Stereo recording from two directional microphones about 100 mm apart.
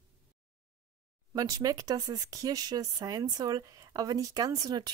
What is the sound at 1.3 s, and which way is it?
A woman's voice, 35° right (ahead or behind).